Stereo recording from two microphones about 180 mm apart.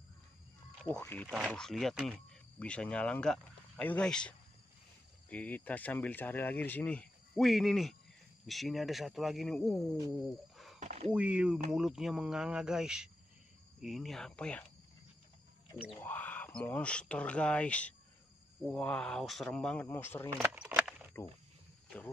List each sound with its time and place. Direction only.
1.0 s speech: 10° left (ahead or behind)
10.2 s a sound: centre (ahead or behind)
10.8 s a sound: 40° right (ahead or behind)
11.1 s speech: 5° right (ahead or behind)
16.0 s speech: 10° left (ahead or behind)
20.2 s keys jangling: 10° right (ahead or behind)